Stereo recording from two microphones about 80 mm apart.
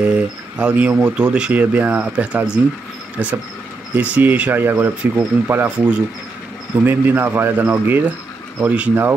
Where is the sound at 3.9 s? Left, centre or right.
Centre.